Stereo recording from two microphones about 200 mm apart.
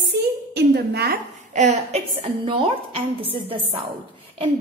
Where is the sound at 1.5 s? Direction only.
35° right (ahead or behind).